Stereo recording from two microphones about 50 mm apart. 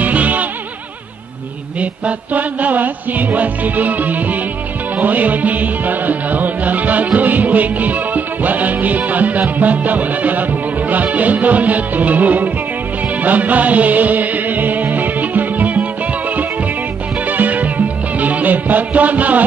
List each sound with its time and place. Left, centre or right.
0.0 s music: right
1.8 s music: right